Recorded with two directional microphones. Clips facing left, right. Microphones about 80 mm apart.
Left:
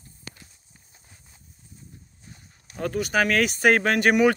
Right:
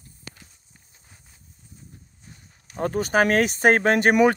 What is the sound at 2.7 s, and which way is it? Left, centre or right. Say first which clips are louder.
Speech: right 3 dB; right.